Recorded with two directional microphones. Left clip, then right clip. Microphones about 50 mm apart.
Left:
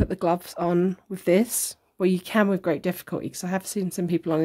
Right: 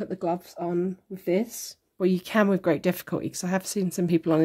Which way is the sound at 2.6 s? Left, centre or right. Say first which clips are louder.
Right 1 dB; centre.